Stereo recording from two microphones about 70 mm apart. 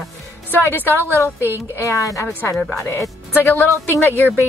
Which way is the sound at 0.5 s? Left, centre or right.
Left.